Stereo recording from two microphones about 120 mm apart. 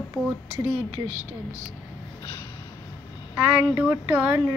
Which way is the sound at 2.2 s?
30° left (ahead or behind).